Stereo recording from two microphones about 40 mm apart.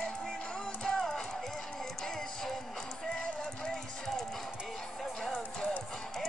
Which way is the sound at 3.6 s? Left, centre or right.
Centre.